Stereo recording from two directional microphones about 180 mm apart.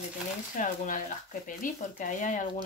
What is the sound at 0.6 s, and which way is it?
Speech, 45° left (ahead or behind).